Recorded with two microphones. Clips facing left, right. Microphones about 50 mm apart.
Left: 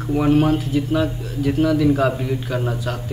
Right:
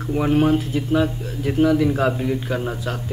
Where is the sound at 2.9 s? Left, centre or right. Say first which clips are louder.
Left 1 dB; centre.